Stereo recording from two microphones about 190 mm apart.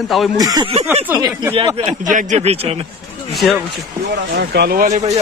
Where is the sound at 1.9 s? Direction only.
40° right (ahead or behind).